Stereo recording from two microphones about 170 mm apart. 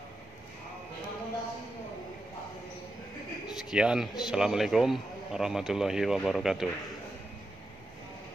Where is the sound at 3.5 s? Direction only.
5° right (ahead or behind).